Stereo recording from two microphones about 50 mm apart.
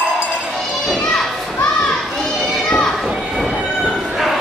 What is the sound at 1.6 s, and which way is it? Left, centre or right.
Children playing, left.